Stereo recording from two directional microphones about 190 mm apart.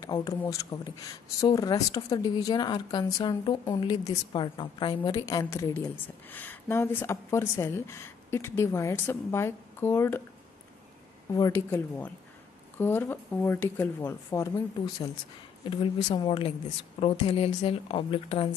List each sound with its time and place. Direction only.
0.0 s a woman's voice: 20° left (ahead or behind)
11.3 s a woman's voice: 20° left (ahead or behind)
15.6 s a woman's voice: 25° left (ahead or behind)